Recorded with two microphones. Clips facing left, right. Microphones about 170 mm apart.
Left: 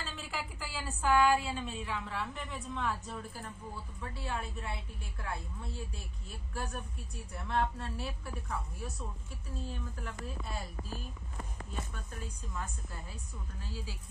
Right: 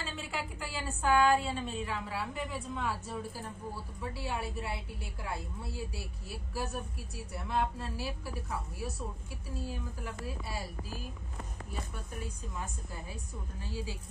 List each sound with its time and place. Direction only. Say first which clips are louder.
0.0 s a woman's voice: right 2 dB; centre (ahead or behind)
12.5 s a woman's voice: left 1 dB; 20° right (ahead or behind)